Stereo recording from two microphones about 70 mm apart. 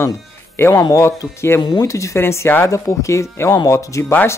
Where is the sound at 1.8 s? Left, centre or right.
Left.